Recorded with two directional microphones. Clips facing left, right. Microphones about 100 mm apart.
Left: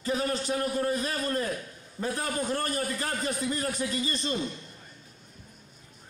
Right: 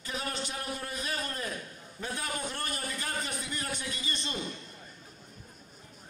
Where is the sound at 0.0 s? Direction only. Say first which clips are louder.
Left 8 dB; 35° left (ahead or behind).